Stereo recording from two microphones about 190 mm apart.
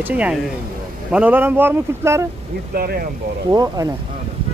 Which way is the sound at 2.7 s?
55° right (ahead or behind).